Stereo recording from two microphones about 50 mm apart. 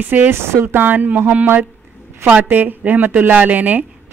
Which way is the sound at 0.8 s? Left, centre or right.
Right.